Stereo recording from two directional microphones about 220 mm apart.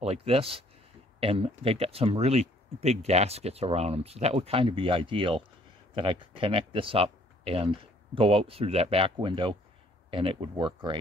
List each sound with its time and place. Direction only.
0.0 s speech: 30° right (ahead or behind)